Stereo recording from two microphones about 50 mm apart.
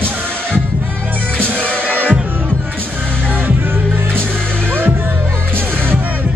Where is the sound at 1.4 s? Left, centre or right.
Right.